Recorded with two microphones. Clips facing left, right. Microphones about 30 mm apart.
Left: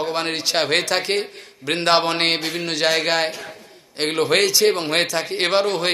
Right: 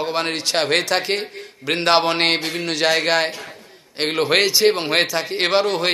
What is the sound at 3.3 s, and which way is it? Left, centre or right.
Speech, right.